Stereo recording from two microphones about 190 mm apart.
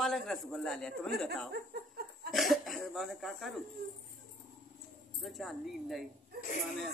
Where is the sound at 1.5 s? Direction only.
55° right (ahead or behind).